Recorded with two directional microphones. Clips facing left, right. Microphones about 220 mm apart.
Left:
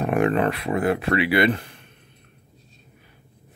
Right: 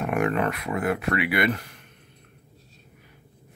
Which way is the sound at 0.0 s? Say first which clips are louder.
Left 4 dB; 30° left (ahead or behind).